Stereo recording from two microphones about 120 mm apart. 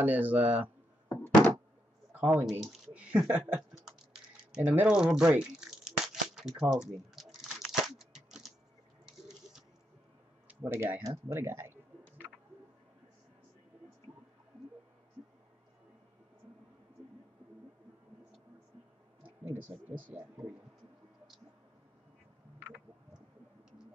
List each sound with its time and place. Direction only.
0.0 s speech: 15° right (ahead or behind)
1.0 s knock: 20° left (ahead or behind)
2.1 s a sound: 15° right (ahead or behind)
2.6 s speech: 5° right (ahead or behind)
3.8 s typing: 5° right (ahead or behind)
4.6 s tearing: 10° right (ahead or behind)
10.5 s speech: 20° right (ahead or behind)
19.5 s speech: 15° right (ahead or behind)